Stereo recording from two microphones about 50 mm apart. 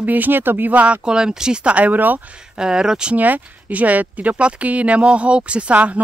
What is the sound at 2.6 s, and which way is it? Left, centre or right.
Speech, centre.